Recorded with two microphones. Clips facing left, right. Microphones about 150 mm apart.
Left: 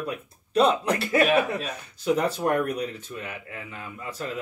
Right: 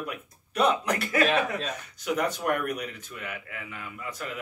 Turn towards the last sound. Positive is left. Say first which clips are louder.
# left 3 dB
turn(degrees=30)  # may be behind; listen again after turning